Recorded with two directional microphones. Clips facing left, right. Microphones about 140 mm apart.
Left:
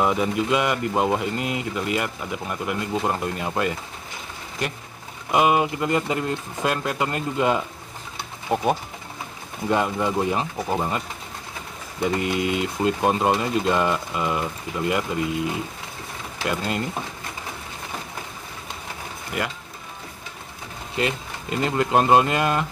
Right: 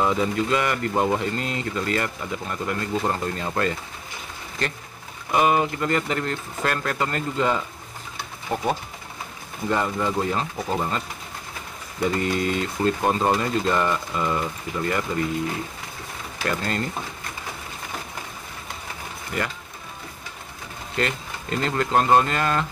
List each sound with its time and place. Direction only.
0.0 s speech: 15° left (ahead or behind)
5.3 s speech: 15° left (ahead or behind)
9.7 s speech: 15° left (ahead or behind)
12.0 s speech: 15° left (ahead or behind)
16.4 s speech: 10° left (ahead or behind)
19.4 s speech: 5° left (ahead or behind)
20.9 s speech: 10° left (ahead or behind)